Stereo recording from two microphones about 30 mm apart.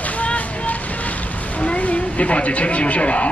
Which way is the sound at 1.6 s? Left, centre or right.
Left.